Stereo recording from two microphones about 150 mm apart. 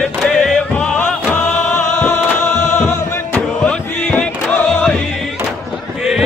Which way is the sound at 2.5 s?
55° left (ahead or behind).